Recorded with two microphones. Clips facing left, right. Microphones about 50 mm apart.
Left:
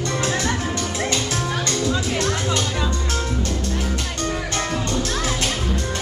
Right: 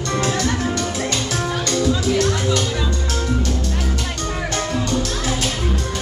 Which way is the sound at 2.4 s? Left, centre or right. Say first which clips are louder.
Right 2 dB; centre.